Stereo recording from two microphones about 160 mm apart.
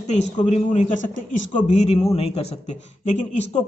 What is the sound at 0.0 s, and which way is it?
A man's voice, 45° left (ahead or behind).